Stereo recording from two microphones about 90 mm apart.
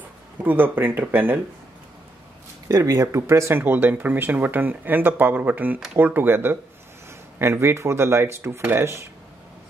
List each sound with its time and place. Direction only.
0.4 s speech: 20° right (ahead or behind)
2.7 s speech: 40° right (ahead or behind)